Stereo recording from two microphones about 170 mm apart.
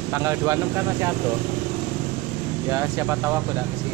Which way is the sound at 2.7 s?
15° right (ahead or behind).